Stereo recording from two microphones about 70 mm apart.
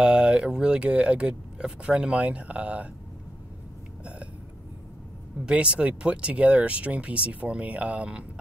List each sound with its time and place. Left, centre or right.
0.0 s speech: centre
4.0 s hiccup: centre
5.4 s speech: centre